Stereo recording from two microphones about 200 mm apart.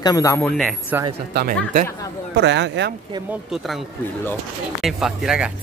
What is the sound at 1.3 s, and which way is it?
A man's voice, 55° right (ahead or behind).